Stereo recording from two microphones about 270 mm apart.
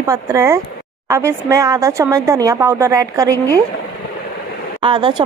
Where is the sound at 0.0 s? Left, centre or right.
Centre.